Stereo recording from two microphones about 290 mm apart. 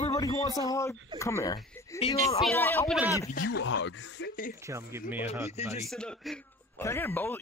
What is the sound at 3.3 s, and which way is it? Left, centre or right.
Speech, left.